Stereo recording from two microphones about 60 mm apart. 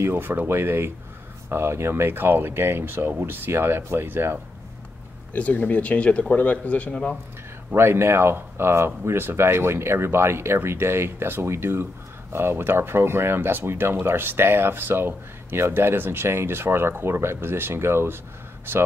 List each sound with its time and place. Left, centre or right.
0.0 s speech: right
5.3 s speech: left
7.7 s speech: right